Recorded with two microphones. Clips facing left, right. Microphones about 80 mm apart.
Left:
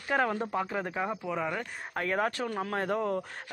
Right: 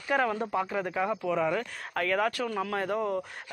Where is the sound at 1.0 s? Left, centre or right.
Centre.